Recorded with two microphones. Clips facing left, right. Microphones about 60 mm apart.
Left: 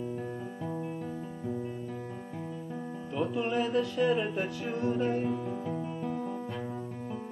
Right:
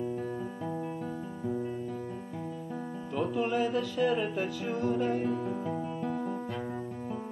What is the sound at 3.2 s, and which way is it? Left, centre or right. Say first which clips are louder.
Music: right 1 dB; centre.